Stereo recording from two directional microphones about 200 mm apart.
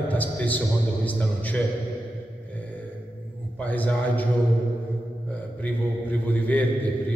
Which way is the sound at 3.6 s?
10° left (ahead or behind).